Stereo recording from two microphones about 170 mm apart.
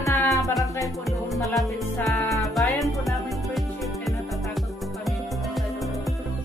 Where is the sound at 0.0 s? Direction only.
20° left (ahead or behind).